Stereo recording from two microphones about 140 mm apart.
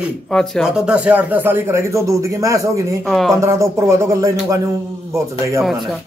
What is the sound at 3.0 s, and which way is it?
Speech, 5° left (ahead or behind).